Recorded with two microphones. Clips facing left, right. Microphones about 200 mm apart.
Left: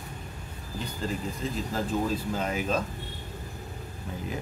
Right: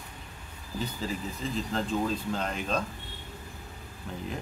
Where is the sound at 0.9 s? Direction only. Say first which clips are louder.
Left 2 dB; centre (ahead or behind).